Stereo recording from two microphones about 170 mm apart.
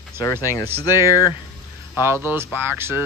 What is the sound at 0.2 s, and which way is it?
Speech, 20° left (ahead or behind).